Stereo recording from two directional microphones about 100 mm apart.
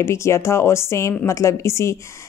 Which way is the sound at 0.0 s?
30° left (ahead or behind).